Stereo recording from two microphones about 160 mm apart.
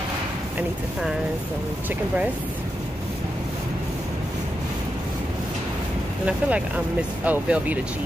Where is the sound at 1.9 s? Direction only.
10° right (ahead or behind).